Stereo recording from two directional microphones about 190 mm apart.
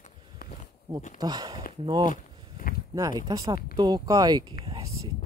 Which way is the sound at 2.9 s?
20° right (ahead or behind).